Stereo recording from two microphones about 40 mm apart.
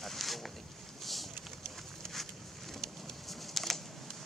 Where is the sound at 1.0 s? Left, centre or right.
Centre.